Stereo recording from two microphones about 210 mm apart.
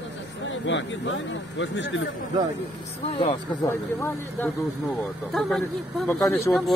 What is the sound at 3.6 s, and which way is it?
Speech, 10° left (ahead or behind).